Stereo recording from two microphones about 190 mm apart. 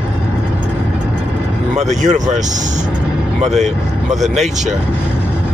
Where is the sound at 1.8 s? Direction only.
40° right (ahead or behind).